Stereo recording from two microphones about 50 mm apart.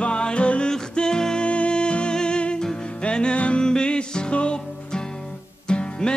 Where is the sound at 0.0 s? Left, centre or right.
Left.